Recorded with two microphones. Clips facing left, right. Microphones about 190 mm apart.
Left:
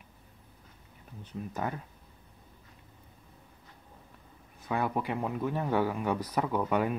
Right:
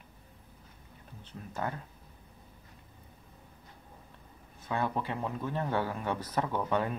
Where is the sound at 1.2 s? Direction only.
15° left (ahead or behind).